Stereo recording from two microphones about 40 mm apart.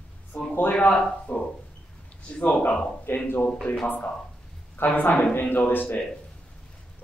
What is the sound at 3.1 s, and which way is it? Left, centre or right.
Speech, left.